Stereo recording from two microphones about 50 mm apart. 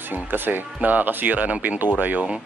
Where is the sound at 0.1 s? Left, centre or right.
Right.